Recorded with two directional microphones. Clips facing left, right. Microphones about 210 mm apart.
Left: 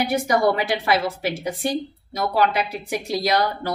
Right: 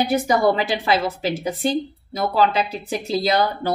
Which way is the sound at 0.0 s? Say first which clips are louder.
Right 2 dB; 25° right (ahead or behind).